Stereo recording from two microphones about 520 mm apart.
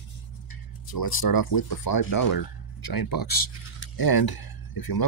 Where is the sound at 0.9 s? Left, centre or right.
Left.